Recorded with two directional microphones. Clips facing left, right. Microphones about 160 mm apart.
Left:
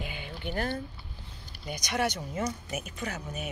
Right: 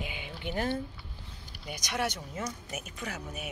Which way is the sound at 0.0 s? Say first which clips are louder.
Left 1 dB; 15° right (ahead or behind).